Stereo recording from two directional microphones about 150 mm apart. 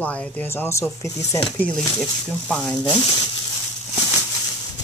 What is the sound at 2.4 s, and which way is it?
Speech, 10° left (ahead or behind).